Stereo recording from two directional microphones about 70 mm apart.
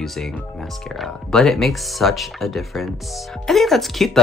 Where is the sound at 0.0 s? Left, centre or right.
Centre.